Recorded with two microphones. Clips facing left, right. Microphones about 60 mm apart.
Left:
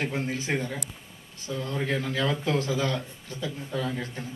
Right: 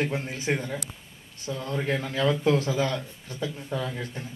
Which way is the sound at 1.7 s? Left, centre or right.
Right.